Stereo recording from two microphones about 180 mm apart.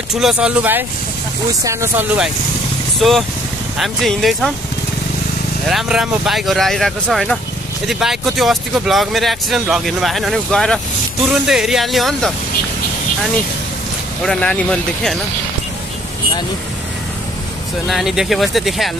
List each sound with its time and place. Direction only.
0.1 s speech: 5° right (ahead or behind)
3.0 s speech: centre (ahead or behind)
5.7 s speech: centre (ahead or behind)
14.2 s speech: 5° left (ahead or behind)
17.8 s speech: centre (ahead or behind)